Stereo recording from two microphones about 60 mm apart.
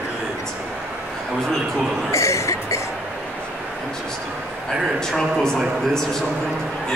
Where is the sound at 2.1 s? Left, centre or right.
Left.